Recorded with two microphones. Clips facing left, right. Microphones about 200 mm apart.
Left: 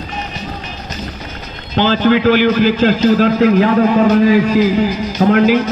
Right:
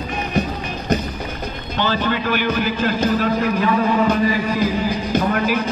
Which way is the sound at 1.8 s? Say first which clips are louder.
Left 9 dB; 85° left.